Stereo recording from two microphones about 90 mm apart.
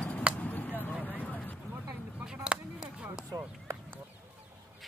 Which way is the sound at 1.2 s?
15° left (ahead or behind).